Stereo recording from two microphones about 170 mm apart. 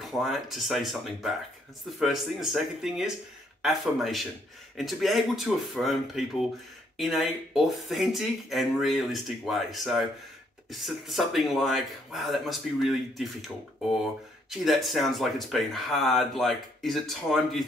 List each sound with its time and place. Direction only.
0.0 s speech: centre (ahead or behind)